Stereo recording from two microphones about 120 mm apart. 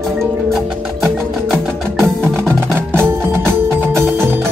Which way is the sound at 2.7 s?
20° right (ahead or behind).